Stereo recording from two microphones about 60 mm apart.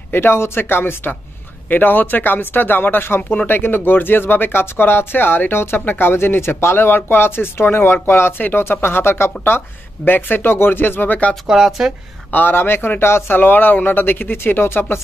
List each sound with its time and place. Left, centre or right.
0.1 s speech: left
11.4 s speech: centre
12.3 s speech: left